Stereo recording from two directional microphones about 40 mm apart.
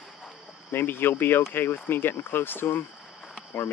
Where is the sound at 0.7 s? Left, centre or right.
Left.